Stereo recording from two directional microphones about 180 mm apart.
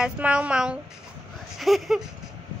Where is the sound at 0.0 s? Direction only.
5° right (ahead or behind).